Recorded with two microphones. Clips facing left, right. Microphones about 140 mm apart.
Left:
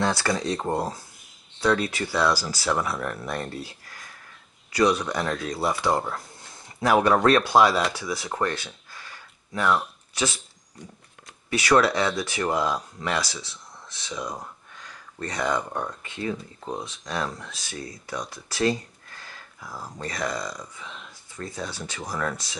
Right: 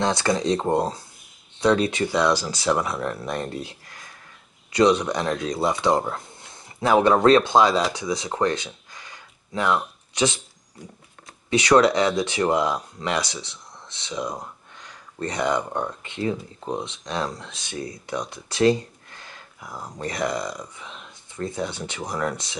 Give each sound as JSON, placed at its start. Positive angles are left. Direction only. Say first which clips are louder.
{"t": 0.0, "sound": "speech", "louder": "right 3 dB", "side_deg": -20}
{"t": 4.7, "sound": "speech", "louder": "right 3 dB", "side_deg": -20}
{"t": 8.9, "sound": "a sound", "louder": "even", "side_deg": -20}
{"t": 10.1, "sound": "speech", "louder": "right 5 dB", "side_deg": -20}
{"t": 10.8, "sound": "speech", "louder": "right 1 dB", "side_deg": -5}
{"t": 11.5, "sound": "speech", "louder": "right 4 dB", "side_deg": -20}